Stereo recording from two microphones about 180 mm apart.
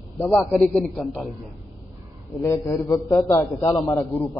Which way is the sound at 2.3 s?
15° left (ahead or behind).